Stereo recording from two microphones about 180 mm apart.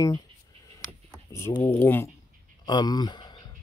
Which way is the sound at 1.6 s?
10° left (ahead or behind).